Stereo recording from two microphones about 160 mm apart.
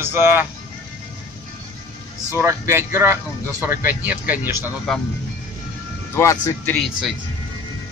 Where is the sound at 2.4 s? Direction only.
15° right (ahead or behind).